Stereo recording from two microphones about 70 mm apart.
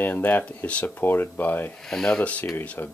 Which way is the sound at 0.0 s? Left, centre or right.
Left.